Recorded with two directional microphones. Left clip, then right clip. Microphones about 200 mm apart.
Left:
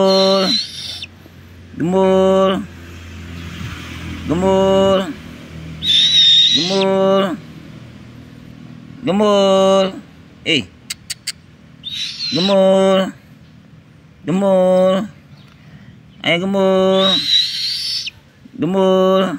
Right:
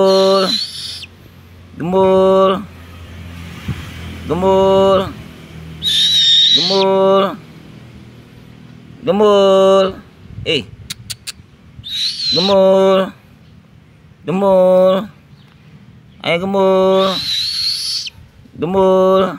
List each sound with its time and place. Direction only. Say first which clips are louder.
0.0 s rodents: right 2 dB; 20° right (ahead or behind)
1.8 s speech: right 2 dB; 20° right (ahead or behind)
4.3 s speech: right 2 dB; 20° right (ahead or behind)
5.9 s owl: left 1 dB; 80° right
6.3 s a sound: right 2 dB; 15° right (ahead or behind)
9.0 s speech: right 3 dB; 20° right (ahead or behind)
10.5 s a sound: even; 20° right (ahead or behind)
11.8 s owl: right 4 dB; 90° right
12.3 s speech: right 2 dB; 20° right (ahead or behind)
14.2 s speech: right 3 dB; 20° right (ahead or behind)
16.2 s speech: right 1 dB; 20° right (ahead or behind)
17.7 s owl: right 1 dB; 20° right (ahead or behind)
18.6 s speech: right 2 dB; 25° right (ahead or behind)